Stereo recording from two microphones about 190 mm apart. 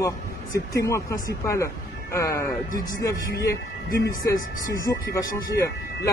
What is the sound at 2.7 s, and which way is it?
Speech, 45° left (ahead or behind).